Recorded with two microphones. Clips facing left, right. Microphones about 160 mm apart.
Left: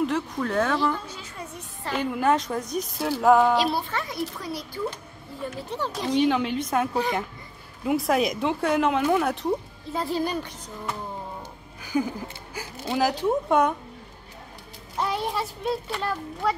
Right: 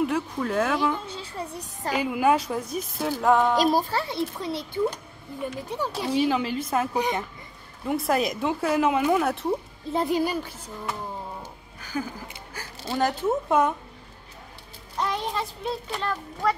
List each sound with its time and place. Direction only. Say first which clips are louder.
0.0 s speech: even; 5° right (ahead or behind)
1.0 s a child's voice: right 4 dB; 30° right (ahead or behind)
2.0 s speech: right 1 dB; 5° right (ahead or behind)
3.5 s a child's voice: right 3 dB; 40° right (ahead or behind); by 4.8 s 25° right (ahead or behind)
5.5 s speech: left 1 dB; 15° right (ahead or behind)
6.9 s speech: even; 15° right (ahead or behind)
7.8 s speech: left 2 dB; centre (ahead or behind)
9.9 s speech: right 2 dB; 15° right (ahead or behind)
11.8 s music: left 5 dB; 15° left (ahead or behind)
12.8 s speech: left 1 dB; centre (ahead or behind)
15.0 s speech: left 1 dB; 5° left (ahead or behind)